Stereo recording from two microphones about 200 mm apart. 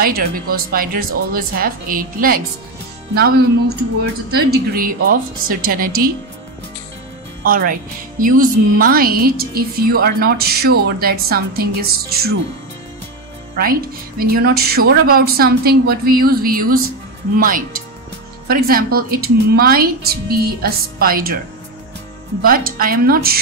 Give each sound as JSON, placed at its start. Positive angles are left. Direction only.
{"t": 0.0, "sound": "a woman's voice", "side_deg": -45}
{"t": 7.4, "sound": "a woman's voice", "side_deg": -45}
{"t": 13.6, "sound": "a woman's voice", "side_deg": -45}
{"t": 22.4, "sound": "a woman's voice", "side_deg": -45}